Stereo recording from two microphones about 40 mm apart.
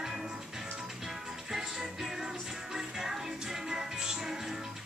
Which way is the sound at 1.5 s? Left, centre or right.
Centre.